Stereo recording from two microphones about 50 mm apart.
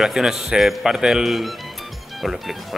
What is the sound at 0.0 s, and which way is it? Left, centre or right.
A man's voice, centre.